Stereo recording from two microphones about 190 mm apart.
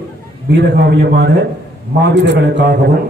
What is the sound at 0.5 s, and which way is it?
A man's voice, 60° right (ahead or behind).